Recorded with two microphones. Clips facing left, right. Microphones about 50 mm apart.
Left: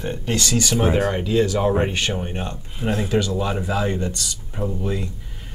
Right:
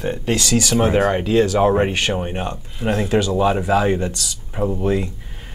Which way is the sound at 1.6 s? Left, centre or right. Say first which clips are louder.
Right 4 dB; right.